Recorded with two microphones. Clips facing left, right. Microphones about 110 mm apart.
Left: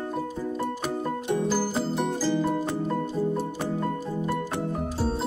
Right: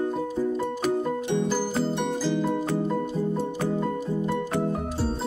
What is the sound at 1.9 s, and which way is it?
Music, centre (ahead or behind).